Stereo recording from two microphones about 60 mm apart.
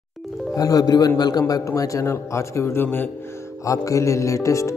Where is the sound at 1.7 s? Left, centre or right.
Left.